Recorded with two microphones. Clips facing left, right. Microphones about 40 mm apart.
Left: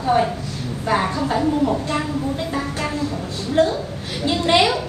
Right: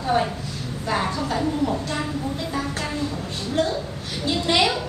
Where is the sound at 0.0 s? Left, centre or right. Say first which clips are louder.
Left 4 dB; centre.